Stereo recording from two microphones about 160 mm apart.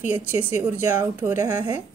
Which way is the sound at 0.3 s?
15° right (ahead or behind).